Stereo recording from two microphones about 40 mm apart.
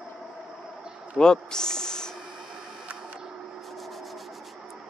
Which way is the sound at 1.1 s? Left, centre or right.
Centre.